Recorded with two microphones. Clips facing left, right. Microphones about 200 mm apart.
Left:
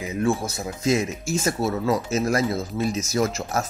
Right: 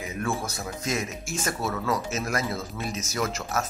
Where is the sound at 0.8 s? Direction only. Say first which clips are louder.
Left 9 dB; 30° left (ahead or behind).